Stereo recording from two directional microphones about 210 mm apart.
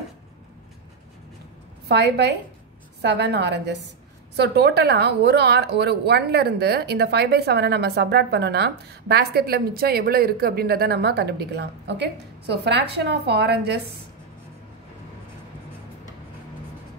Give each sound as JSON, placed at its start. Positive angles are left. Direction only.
{"t": 1.9, "sound": "speech", "side_deg": -50}